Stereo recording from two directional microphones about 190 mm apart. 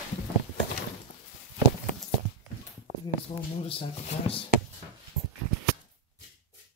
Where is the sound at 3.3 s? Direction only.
25° left (ahead or behind).